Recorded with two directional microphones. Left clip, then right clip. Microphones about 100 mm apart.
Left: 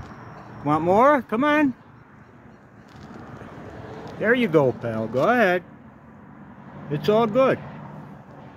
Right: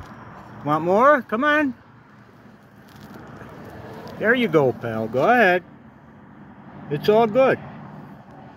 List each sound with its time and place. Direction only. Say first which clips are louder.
0.7 s speech: right 1 dB; 55° left (ahead or behind)
4.0 s speech: right 1 dB; 30° left (ahead or behind)
6.9 s speech: right 3 dB; 35° left (ahead or behind)